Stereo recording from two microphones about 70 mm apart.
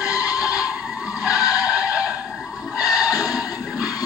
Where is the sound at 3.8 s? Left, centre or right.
Left.